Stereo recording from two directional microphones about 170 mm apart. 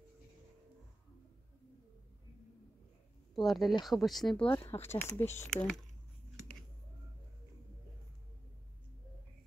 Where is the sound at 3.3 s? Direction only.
Centre (ahead or behind).